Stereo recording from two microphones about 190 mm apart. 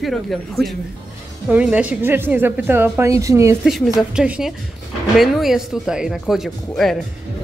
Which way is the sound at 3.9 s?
5° right (ahead or behind).